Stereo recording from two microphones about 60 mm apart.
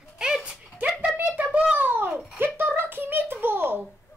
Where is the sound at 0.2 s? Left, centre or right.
Centre.